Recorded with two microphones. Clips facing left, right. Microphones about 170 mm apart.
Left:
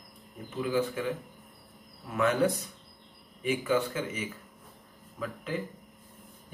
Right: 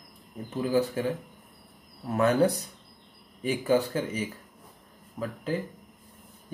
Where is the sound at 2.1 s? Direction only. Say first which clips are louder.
Right 3 dB; 35° right (ahead or behind).